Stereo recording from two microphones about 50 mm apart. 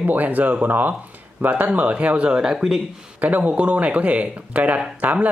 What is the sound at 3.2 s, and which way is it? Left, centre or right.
Speech, right.